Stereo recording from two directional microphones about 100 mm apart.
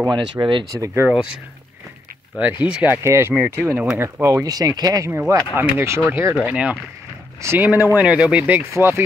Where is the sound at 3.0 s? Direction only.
25° right (ahead or behind).